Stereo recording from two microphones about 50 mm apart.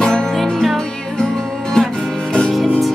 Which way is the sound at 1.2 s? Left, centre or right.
Centre.